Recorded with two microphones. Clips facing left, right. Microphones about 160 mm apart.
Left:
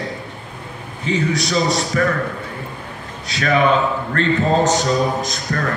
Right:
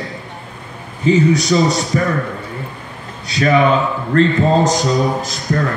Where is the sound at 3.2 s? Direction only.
35° right (ahead or behind).